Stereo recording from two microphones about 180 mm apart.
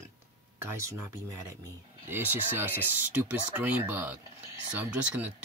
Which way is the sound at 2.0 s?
10° right (ahead or behind).